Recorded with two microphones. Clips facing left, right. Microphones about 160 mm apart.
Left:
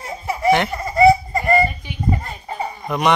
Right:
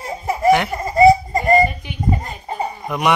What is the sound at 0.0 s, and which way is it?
Laughter, 40° right (ahead or behind).